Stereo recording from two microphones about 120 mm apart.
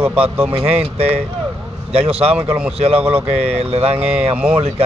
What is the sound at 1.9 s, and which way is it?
Speech, 55° right (ahead or behind).